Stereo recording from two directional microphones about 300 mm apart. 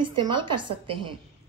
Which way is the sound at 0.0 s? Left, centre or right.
Centre.